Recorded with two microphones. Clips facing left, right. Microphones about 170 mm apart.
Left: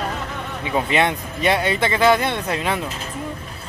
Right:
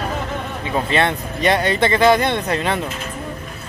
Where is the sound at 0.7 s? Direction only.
10° left (ahead or behind).